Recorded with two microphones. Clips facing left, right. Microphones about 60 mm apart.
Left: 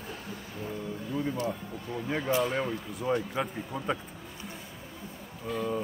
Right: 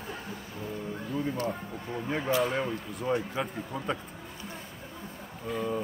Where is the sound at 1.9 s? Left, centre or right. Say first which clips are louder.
Even; centre.